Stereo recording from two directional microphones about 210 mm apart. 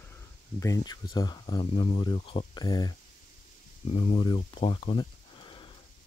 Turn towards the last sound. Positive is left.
turn(degrees=25)  # may be behind; listen again after turning